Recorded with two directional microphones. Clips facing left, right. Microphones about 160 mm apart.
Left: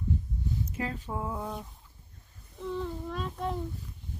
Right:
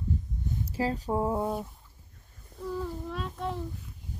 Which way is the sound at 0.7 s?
35° right (ahead or behind).